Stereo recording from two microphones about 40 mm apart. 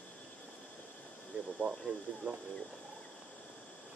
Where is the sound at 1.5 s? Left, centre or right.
Right.